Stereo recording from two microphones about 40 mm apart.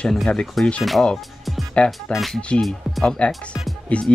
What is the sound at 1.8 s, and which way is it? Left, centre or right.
Speech, left.